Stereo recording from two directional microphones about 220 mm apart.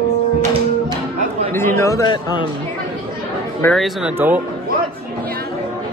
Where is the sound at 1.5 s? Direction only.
10° left (ahead or behind).